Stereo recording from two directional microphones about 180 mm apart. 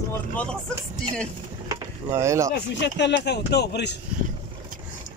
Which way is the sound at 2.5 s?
75° left (ahead or behind).